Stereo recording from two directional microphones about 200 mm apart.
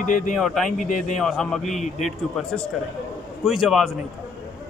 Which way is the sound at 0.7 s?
40° left (ahead or behind).